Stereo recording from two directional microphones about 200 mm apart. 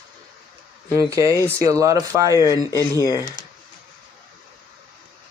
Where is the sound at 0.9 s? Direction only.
15° right (ahead or behind).